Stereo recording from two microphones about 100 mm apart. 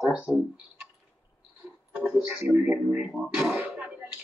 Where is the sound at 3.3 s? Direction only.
10° right (ahead or behind).